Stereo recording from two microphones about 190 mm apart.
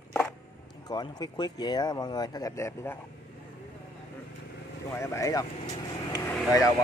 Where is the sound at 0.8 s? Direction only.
20° left (ahead or behind).